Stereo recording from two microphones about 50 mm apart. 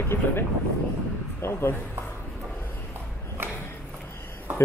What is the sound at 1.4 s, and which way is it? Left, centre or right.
Speech, left.